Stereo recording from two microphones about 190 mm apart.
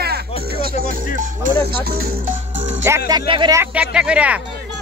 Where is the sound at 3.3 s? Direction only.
20° right (ahead or behind).